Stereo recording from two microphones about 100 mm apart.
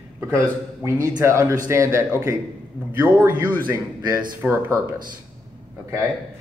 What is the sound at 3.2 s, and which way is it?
Speech, 15° right (ahead or behind).